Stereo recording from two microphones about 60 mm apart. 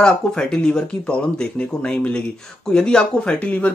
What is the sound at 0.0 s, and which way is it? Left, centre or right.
Speech, centre.